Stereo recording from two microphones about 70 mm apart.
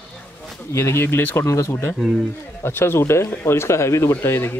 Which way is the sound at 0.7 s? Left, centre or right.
Left.